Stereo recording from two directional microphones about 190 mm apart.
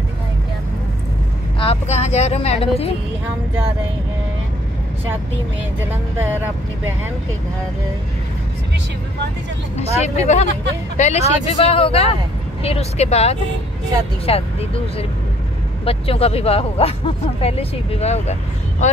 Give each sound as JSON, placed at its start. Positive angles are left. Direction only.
{"t": 1.6, "sound": "speech", "side_deg": 35}
{"t": 9.8, "sound": "speech", "side_deg": 35}